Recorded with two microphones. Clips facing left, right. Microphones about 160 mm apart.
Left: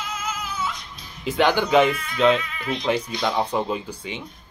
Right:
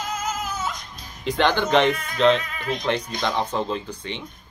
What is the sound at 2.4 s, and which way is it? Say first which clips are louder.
Speech: even; 45° right (ahead or behind).